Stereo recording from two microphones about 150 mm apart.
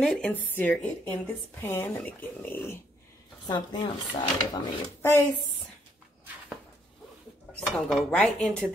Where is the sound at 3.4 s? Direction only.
30° left (ahead or behind).